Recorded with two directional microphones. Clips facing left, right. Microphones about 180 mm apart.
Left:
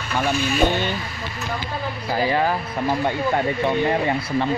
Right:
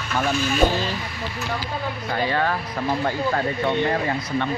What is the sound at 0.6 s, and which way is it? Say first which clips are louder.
Speech: even; 5° right (ahead or behind).